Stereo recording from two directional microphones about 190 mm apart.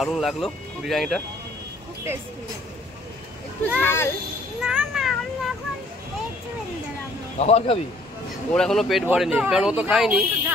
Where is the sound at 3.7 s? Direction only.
10° left (ahead or behind).